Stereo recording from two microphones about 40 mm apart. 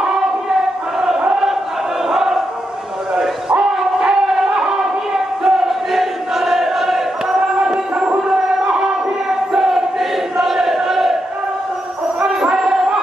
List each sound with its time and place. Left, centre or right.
2.0 s crowd: centre
4.0 s a sound: centre
7.6 s a sound: centre
8.3 s music: centre
9.5 s battle cry: centre
12.3 s music: centre